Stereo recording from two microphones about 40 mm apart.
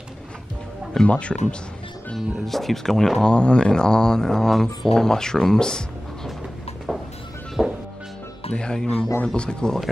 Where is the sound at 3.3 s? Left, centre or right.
Left.